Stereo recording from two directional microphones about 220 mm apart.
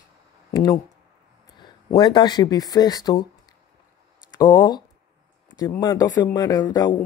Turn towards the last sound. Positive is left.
turn(degrees=20)  # may be behind; listen again after turning